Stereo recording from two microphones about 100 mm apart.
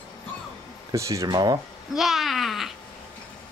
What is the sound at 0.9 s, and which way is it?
Speech, 30° right (ahead or behind).